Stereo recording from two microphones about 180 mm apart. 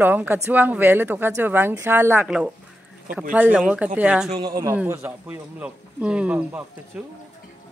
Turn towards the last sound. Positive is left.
turn(degrees=-10)  # may be behind; listen again after turning